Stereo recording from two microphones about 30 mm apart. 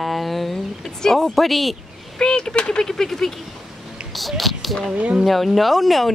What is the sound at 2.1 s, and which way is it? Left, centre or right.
Speech, left.